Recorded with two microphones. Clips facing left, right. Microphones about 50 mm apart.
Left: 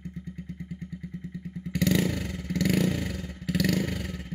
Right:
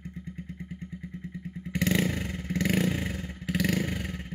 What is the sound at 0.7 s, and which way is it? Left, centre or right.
Vehicle, right.